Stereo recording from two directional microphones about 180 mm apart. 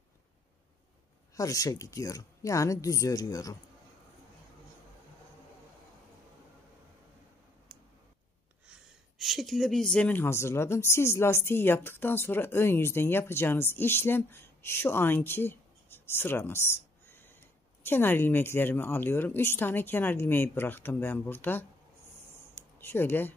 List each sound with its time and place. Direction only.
1.3 s speech: 20° left (ahead or behind)
9.2 s speech: centre (ahead or behind)